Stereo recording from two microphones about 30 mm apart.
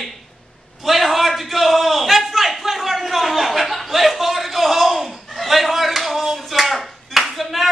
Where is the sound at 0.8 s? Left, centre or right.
Centre.